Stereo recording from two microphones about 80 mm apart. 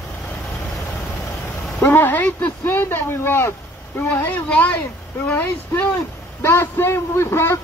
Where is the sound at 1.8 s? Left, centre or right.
Left.